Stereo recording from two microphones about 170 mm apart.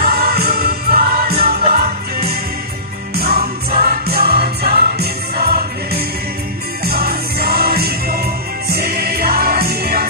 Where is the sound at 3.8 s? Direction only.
65° right (ahead or behind).